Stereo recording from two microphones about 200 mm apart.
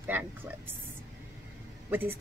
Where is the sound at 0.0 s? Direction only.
10° right (ahead or behind).